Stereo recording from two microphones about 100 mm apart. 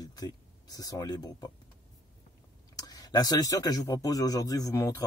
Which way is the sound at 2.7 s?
35° left (ahead or behind).